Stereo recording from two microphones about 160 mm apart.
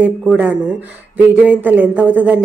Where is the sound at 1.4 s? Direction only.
10° right (ahead or behind).